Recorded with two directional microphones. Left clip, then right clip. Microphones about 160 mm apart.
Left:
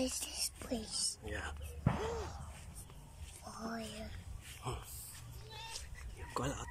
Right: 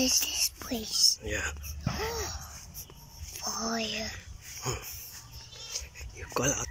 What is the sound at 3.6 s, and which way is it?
Speech, 10° right (ahead or behind).